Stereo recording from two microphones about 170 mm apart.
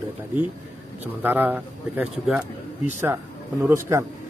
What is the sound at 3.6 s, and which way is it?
Speech, 15° right (ahead or behind).